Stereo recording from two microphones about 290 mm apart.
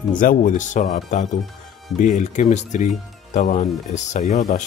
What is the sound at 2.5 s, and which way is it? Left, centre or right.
Speech, left.